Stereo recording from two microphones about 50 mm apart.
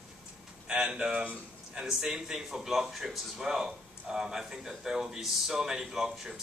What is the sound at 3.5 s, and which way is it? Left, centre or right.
Speech, centre.